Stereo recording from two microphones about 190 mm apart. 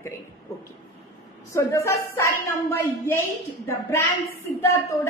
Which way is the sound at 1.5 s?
15° left (ahead or behind).